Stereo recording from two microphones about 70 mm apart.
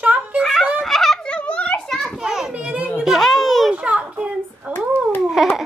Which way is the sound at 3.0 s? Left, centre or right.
Centre.